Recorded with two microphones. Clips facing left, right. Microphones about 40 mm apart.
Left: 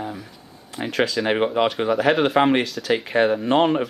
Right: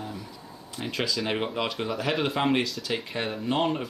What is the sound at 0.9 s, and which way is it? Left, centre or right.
Speech, left.